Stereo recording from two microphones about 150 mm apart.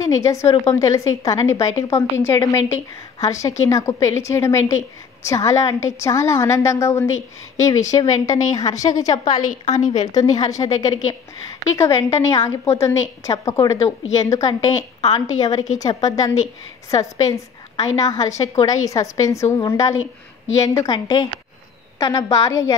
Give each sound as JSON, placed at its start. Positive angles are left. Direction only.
{"t": 0.0, "sound": "a woman's voice", "side_deg": 20}
{"t": 9.4, "sound": "a woman's voice", "side_deg": 60}
{"t": 10.0, "sound": "a woman's voice", "side_deg": 25}